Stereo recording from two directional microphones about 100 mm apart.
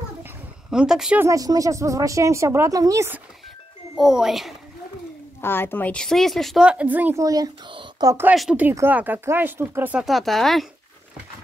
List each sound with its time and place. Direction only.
0.7 s speech: 5° right (ahead or behind)
1.2 s speech: 35° right (ahead or behind)
3.9 s speech: 5° right (ahead or behind)
5.4 s speech: 20° left (ahead or behind)
6.0 s speech: 5° left (ahead or behind)
6.6 s speech: 10° right (ahead or behind)
7.2 s speech: 35° right (ahead or behind)
7.6 s a sound: 55° right (ahead or behind)
8.3 s speech: 10° right (ahead or behind)
9.9 s speech: centre (ahead or behind)